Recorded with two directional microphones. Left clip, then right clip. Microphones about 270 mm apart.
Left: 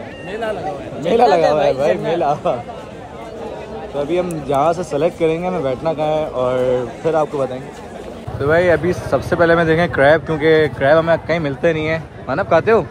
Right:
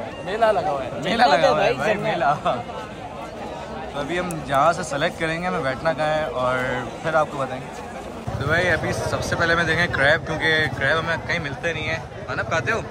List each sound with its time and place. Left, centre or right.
0.3 s speech: centre
1.0 s speech: right
4.2 s speech: right
8.4 s speech: centre